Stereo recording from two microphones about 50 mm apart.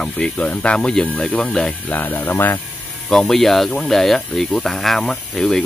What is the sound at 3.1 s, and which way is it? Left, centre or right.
Speech, centre.